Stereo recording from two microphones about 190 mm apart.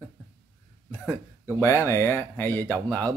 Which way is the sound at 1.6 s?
15° left (ahead or behind).